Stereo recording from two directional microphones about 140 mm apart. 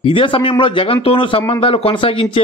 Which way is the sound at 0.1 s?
40° left (ahead or behind).